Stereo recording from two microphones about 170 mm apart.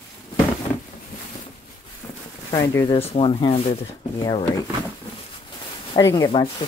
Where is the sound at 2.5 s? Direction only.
20° left (ahead or behind).